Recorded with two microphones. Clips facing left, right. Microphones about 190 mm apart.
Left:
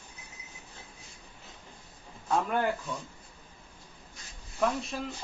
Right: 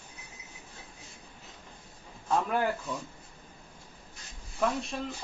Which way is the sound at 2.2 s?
Centre (ahead or behind).